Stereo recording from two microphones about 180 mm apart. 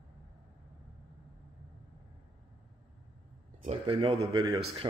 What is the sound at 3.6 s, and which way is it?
Speech, 35° right (ahead or behind).